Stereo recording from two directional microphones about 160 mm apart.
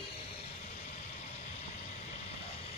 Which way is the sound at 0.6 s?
45° left (ahead or behind).